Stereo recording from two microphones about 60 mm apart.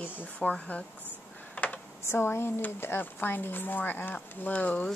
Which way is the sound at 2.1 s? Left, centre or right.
Left.